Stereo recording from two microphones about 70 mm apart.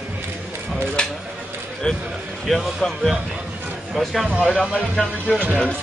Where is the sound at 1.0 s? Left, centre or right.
Centre.